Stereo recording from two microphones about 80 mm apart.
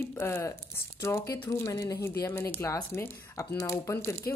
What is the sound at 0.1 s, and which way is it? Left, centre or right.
Speech, left.